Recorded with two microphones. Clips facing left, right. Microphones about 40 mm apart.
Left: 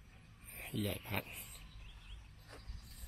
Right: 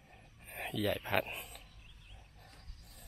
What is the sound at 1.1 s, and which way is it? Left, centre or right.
Speech, right.